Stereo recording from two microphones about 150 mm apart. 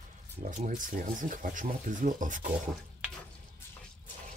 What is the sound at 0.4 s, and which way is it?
Speech, 55° right (ahead or behind).